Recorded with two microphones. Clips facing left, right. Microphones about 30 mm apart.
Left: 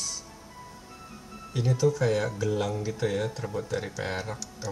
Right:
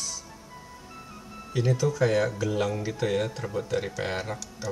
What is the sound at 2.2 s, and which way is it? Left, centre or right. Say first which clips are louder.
Speech: right 3 dB; centre.